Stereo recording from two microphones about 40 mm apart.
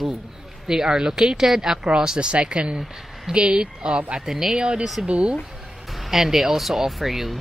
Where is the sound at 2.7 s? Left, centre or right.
Centre.